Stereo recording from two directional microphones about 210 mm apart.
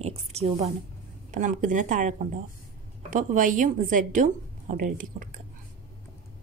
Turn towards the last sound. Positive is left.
turn(degrees=-40)  # may be behind; listen again after turning